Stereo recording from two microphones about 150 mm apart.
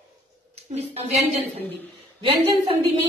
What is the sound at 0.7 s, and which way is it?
Speech, 45° right (ahead or behind).